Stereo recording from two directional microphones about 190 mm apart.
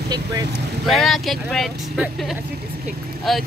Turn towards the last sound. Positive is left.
turn(degrees=0)  # may be behind; listen again after turning